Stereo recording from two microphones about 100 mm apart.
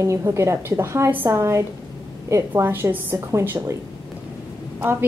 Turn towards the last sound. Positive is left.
turn(degrees=-20)  # may be behind; listen again after turning